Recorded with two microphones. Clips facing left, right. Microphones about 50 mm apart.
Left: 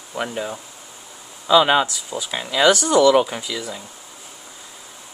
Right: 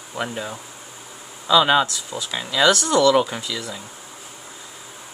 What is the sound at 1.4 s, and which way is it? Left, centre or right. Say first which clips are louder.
Speech: left 1 dB; centre.